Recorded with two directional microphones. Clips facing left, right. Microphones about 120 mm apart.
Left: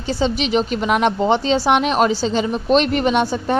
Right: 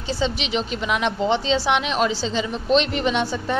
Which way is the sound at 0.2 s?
45° left (ahead or behind).